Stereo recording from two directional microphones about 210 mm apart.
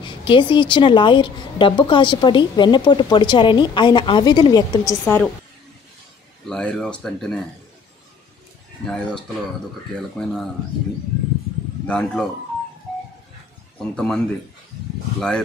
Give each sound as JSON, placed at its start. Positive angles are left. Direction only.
{"t": 0.0, "sound": "a woman's voice", "side_deg": 25}
{"t": 6.4, "sound": "speech", "side_deg": 5}
{"t": 8.8, "sound": "speech", "side_deg": 5}
{"t": 10.2, "sound": "speech", "side_deg": 5}
{"t": 11.8, "sound": "speech", "side_deg": 5}
{"t": 13.9, "sound": "speech", "side_deg": 5}